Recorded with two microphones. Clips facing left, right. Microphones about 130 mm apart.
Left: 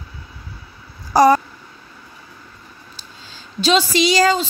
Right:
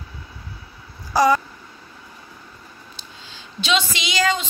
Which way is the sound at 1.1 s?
45° left (ahead or behind).